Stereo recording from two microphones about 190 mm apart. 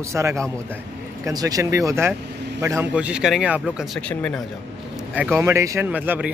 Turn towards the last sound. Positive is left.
turn(degrees=-10)  # may be behind; listen again after turning